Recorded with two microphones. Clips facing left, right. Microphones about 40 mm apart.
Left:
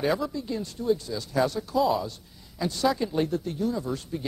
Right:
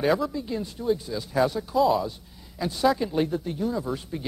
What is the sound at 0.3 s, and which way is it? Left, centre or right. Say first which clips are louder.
A man's voice: right 1 dB; centre.